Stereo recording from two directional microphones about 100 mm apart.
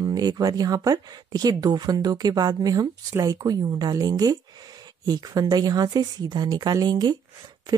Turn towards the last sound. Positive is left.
turn(degrees=-45)  # may be behind; listen again after turning